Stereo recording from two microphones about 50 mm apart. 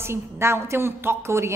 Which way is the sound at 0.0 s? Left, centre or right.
Right.